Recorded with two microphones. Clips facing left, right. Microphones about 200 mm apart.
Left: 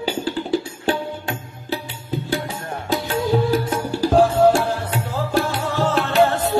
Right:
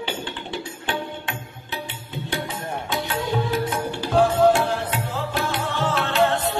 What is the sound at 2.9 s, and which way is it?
Music, 40° left (ahead or behind).